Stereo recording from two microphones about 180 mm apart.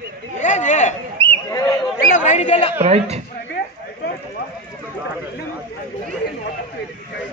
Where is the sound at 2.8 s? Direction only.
35° right (ahead or behind).